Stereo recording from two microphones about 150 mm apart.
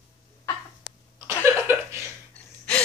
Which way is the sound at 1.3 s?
20° right (ahead or behind).